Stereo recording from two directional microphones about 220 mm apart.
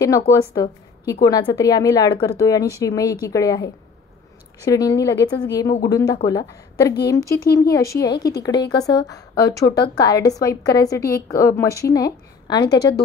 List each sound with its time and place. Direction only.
0.3 s speech: 15° left (ahead or behind)
4.6 s a woman's voice: 15° left (ahead or behind)
12.7 s speech: 50° left (ahead or behind)